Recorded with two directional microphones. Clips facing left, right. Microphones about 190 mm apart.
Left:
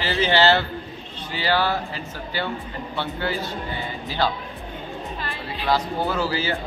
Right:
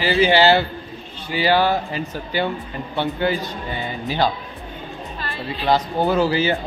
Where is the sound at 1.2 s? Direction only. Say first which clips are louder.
Right 5 dB; 15° right (ahead or behind).